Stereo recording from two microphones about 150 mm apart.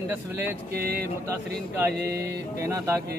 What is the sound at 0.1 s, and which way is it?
Speech, 15° right (ahead or behind).